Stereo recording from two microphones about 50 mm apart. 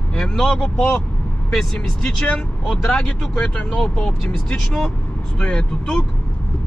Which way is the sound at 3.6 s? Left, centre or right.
Left.